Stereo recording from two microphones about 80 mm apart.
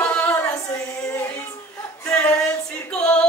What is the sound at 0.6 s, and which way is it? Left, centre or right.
Music, left.